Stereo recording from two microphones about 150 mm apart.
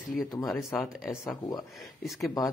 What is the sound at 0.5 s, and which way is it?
Speech, centre (ahead or behind).